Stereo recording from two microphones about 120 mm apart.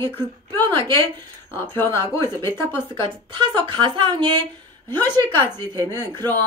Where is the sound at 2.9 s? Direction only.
45° right (ahead or behind).